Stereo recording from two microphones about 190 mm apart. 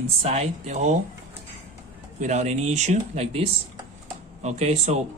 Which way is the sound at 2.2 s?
40° right (ahead or behind).